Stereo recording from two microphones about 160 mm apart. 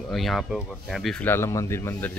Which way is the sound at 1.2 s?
15° left (ahead or behind).